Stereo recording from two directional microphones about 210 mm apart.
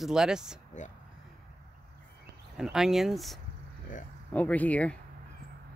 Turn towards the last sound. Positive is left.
turn(degrees=5)  # may be behind; listen again after turning